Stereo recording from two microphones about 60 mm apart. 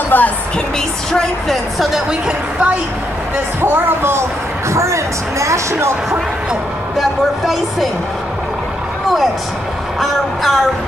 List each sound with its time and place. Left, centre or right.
0.1 s speech: left
1.1 s speech: centre
2.0 s a woman's voice: centre
3.6 s speech: right
7.0 s speech: centre
9.9 s speech: centre